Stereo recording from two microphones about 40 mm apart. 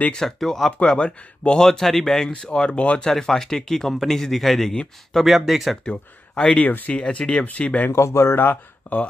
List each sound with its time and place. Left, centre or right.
0.1 s speech: centre
0.7 s speech: left
1.7 s speech: centre; by 3.0 s left
3.0 s a man's voice: centre
5.2 s a man's voice: centre
5.9 s speech: left
8.2 s speech: left
8.9 s speech: left